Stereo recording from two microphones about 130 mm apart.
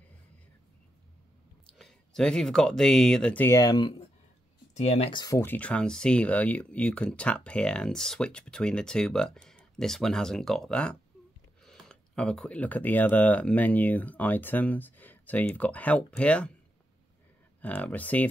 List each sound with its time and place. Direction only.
1.8 s speech: 5° left (ahead or behind)
3.4 s speech: 30° left (ahead or behind)
4.7 s speech: 55° left (ahead or behind)
5.1 s speech: 30° left (ahead or behind)
5.4 s speech: 10° left (ahead or behind)
17.6 s speech: 10° left (ahead or behind)